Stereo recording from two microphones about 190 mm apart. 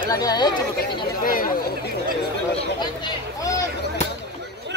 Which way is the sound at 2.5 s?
20° left (ahead or behind).